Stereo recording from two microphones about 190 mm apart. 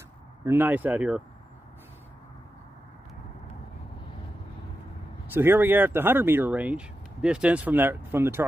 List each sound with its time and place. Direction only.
0.5 s speech: 10° right (ahead or behind)
5.3 s speech: 10° right (ahead or behind)